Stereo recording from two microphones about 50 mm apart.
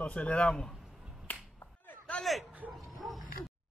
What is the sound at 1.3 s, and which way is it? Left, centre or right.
Finger snapping, left.